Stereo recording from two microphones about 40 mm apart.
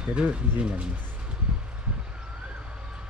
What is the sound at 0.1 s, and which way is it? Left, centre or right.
Speech, right.